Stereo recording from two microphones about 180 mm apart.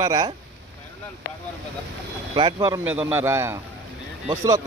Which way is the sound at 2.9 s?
10° right (ahead or behind).